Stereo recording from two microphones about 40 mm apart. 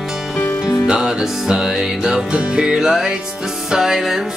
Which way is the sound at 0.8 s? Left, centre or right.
Centre.